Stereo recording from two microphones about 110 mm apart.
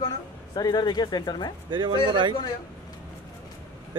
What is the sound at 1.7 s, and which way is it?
Speech, 45° right (ahead or behind).